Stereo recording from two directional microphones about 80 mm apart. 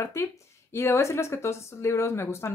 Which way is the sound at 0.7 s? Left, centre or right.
Left.